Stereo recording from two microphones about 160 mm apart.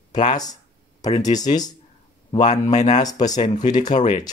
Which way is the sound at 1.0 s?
40° left (ahead or behind).